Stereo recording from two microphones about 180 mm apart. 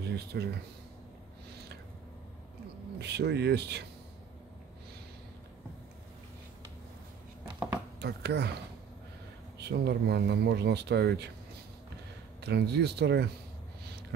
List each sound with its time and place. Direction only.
0.0 s a sound: 65° right (ahead or behind)
3.0 s speech: 70° right (ahead or behind)
8.0 s speech: 70° right (ahead or behind)
9.6 s speech: 65° right (ahead or behind)
12.4 s speech: 65° right (ahead or behind)